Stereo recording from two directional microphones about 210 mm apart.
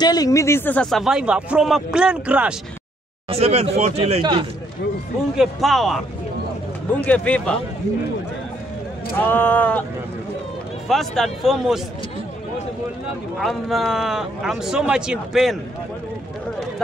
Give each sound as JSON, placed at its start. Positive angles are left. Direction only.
{"t": 0.0, "sound": "speech", "side_deg": 20}
{"t": 3.3, "sound": "speech", "side_deg": -30}
{"t": 5.4, "sound": "speech", "side_deg": 0}
{"t": 7.1, "sound": "speech", "side_deg": 5}
{"t": 9.1, "sound": "speech", "side_deg": 10}
{"t": 10.9, "sound": "speech", "side_deg": 0}
{"t": 13.4, "sound": "speech", "side_deg": 0}